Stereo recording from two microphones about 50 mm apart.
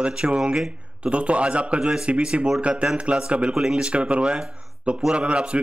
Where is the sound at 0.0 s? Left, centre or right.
Right.